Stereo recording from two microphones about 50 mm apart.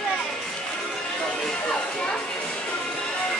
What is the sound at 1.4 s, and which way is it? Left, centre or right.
Music, centre.